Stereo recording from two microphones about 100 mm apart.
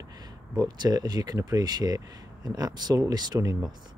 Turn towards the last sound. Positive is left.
turn(degrees=-40)  # may be behind; listen again after turning